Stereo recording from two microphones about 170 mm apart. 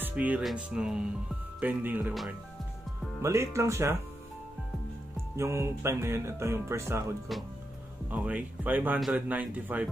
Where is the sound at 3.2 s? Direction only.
15° right (ahead or behind).